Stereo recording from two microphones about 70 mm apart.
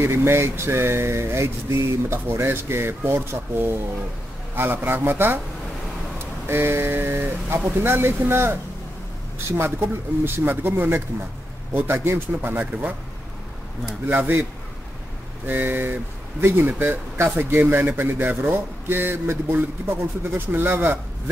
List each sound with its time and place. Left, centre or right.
0.0 s speech: right
9.8 s speech: right
14.0 s speech: right
15.4 s speech: right